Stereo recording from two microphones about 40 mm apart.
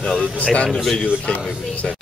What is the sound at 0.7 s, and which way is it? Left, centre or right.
Speech, centre.